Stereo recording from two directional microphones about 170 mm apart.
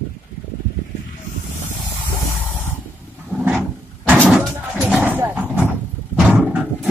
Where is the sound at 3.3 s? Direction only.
10° right (ahead or behind).